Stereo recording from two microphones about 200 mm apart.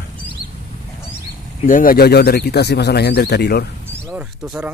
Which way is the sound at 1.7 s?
45° left (ahead or behind).